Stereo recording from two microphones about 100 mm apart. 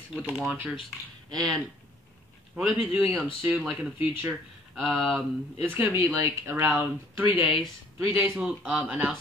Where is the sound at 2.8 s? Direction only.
15° right (ahead or behind).